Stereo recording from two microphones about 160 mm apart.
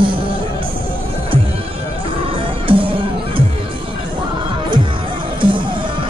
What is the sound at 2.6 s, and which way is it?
Music, 35° right (ahead or behind).